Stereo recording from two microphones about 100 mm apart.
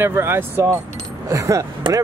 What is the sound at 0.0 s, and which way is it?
Speech, 25° right (ahead or behind).